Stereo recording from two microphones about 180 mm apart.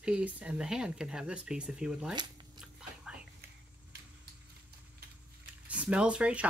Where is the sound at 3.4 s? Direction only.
60° right (ahead or behind).